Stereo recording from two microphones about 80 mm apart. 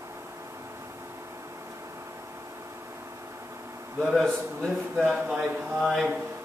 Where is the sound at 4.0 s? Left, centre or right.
Centre.